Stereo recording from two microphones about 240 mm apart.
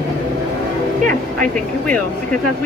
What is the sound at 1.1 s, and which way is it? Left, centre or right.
Speech, centre.